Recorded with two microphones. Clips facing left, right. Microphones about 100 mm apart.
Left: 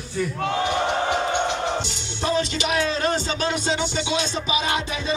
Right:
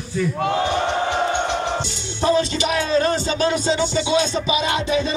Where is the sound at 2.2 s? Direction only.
35° right (ahead or behind).